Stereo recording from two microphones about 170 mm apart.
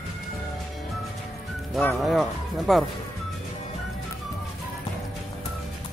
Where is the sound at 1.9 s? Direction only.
Centre (ahead or behind).